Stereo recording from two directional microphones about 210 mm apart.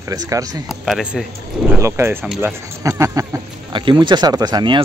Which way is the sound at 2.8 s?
15° right (ahead or behind).